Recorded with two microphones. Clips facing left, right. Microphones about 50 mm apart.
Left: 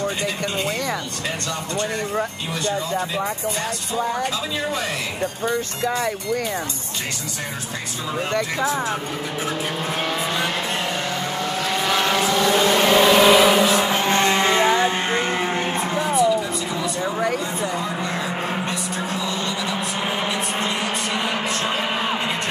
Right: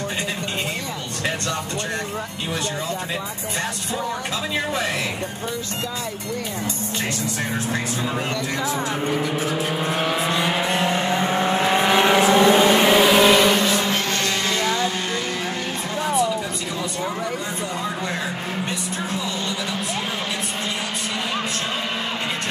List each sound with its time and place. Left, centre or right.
10.3 s vehicle: centre; by 15.2 s left
16.0 s music: left